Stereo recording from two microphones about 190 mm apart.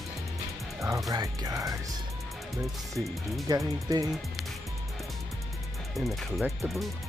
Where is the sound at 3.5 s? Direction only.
20° right (ahead or behind).